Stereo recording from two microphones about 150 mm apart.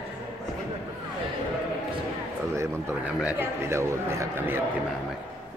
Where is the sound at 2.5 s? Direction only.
15° right (ahead or behind).